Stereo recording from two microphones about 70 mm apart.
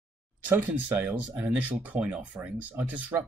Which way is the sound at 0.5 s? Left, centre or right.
Right.